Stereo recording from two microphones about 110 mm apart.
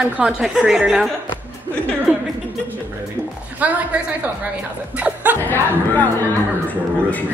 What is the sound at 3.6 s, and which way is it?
Speech, 15° right (ahead or behind).